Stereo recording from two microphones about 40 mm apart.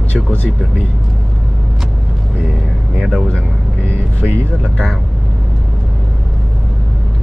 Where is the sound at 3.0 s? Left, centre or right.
Centre.